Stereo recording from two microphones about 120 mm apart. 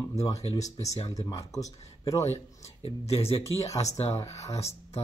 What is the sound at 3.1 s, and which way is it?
Speech, 55° left (ahead or behind).